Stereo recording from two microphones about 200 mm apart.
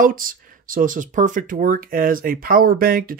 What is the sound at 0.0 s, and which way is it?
Speech, 45° right (ahead or behind).